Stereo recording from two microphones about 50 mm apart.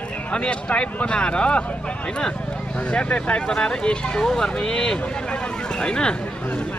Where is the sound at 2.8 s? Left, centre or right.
Left.